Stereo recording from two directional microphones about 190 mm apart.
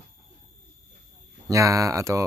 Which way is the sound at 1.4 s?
15° right (ahead or behind).